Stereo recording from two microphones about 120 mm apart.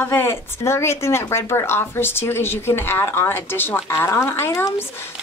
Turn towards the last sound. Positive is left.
turn(degrees=25)  # may be behind; listen again after turning